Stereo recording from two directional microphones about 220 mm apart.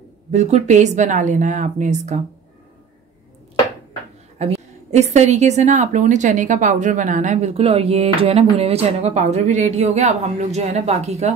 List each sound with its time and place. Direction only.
0.3 s a woman's voice: 30° right (ahead or behind)
4.4 s a woman's voice: 30° right (ahead or behind)